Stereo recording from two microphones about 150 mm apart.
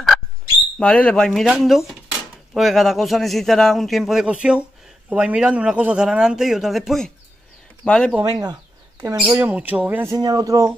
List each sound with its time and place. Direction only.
0.7 s a man's voice: 10° left (ahead or behind)
8.2 s speech: 25° right (ahead or behind)
9.2 s speech: 10° right (ahead or behind)